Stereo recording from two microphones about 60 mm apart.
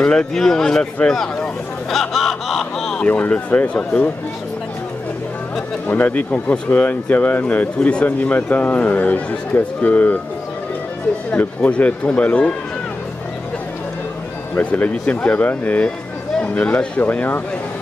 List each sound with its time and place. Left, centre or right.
0.0 s speech: centre
1.0 s vehicle: centre
3.0 s speech: left
5.9 s speech: left
11.3 s speech: left
14.6 s speech: left